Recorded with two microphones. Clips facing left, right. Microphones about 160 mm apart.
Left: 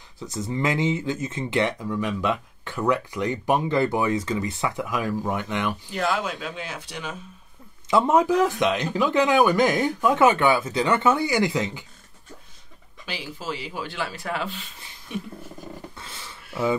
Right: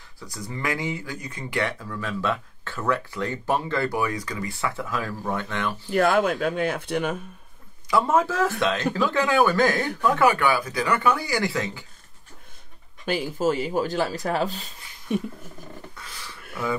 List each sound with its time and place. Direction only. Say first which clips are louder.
0.2 s speech: left 5 dB; 20° left (ahead or behind)
5.9 s speech: right 11 dB; 50° right (ahead or behind)
7.9 s speech: left 3 dB; 20° left (ahead or behind)
13.0 s speech: right 10 dB; 50° right (ahead or behind)
16.0 s dog: left 1 dB; 25° left (ahead or behind)